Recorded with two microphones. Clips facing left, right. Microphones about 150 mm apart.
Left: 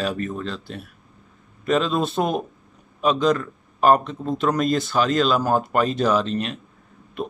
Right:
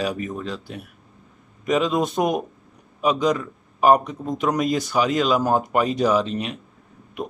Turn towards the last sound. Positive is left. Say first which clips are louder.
# left 1 dB
turn(degrees=-15)  # may be behind; listen again after turning